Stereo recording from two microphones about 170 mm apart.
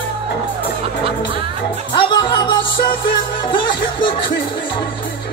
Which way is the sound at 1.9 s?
25° left (ahead or behind).